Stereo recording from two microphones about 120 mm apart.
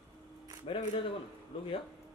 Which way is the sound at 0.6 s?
50° left (ahead or behind).